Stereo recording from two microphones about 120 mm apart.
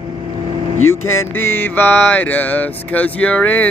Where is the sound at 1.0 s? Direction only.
20° left (ahead or behind).